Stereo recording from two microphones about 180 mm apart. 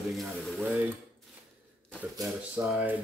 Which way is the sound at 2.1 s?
15° right (ahead or behind).